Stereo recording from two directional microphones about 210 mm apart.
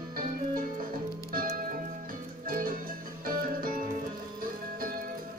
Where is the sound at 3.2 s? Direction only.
40° right (ahead or behind).